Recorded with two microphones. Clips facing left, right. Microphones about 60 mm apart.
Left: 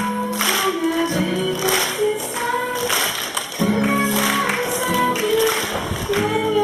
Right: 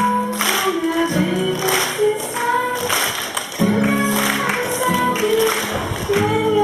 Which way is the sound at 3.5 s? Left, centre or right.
Centre.